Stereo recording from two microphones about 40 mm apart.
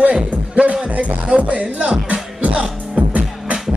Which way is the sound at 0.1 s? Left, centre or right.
Right.